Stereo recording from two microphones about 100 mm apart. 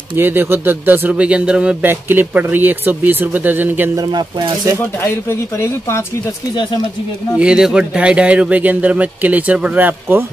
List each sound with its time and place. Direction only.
0.1 s speech: 20° right (ahead or behind)
1.9 s speech: 20° right (ahead or behind)
3.9 s speech: 40° right (ahead or behind)
5.0 s speech: 25° left (ahead or behind)
7.3 s speech: 10° right (ahead or behind)